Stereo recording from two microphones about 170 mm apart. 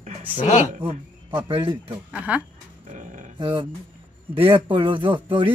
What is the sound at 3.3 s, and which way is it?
Speech, 30° right (ahead or behind).